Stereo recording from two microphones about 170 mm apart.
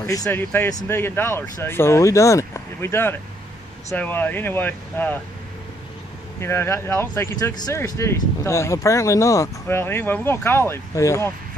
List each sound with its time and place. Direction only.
0.0 s speech: 15° left (ahead or behind)
6.4 s speech: 15° left (ahead or behind)